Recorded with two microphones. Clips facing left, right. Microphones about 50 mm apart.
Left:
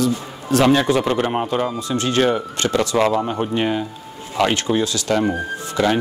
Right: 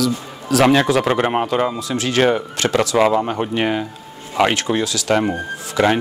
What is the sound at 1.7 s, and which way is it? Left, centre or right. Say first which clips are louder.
Speech: right 1 dB; right.